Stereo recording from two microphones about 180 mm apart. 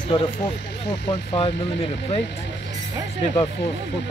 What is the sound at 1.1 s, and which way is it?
Speech, 30° left (ahead or behind).